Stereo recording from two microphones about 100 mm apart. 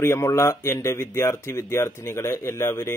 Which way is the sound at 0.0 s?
30° left (ahead or behind).